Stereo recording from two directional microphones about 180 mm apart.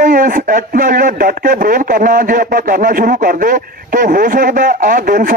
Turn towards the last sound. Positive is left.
turn(degrees=-50)  # may be behind; listen again after turning